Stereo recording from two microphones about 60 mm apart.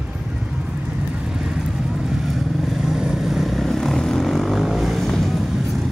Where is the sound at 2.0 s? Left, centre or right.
Centre.